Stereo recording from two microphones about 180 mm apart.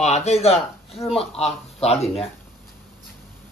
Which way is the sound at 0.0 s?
40° left (ahead or behind).